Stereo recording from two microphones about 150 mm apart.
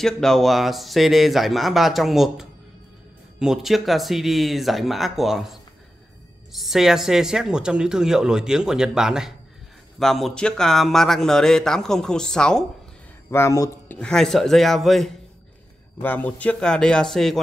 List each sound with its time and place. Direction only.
0.0 s speech: 5° left (ahead or behind)
13.3 s speech: 20° left (ahead or behind)
13.9 s speech: 5° left (ahead or behind)